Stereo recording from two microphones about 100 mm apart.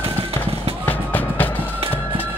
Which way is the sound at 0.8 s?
20° left (ahead or behind).